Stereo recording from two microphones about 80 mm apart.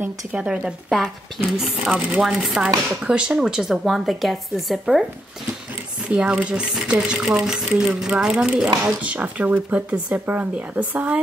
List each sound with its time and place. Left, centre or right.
0.0 s a woman's voice: centre
6.0 s speech: centre